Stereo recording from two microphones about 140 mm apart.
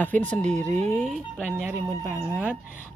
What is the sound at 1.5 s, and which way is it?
Speech, 15° right (ahead or behind).